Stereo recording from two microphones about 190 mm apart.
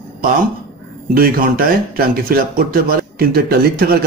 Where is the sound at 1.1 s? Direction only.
50° right (ahead or behind).